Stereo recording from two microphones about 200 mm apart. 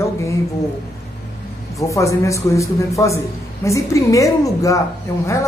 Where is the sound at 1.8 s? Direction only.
15° left (ahead or behind).